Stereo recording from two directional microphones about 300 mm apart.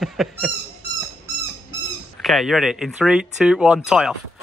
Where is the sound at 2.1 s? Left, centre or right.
Centre.